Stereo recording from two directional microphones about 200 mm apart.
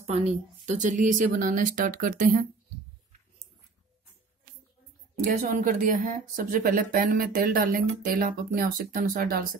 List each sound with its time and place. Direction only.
0.0 s speech: 35° right (ahead or behind)
5.2 s speech: 45° right (ahead or behind)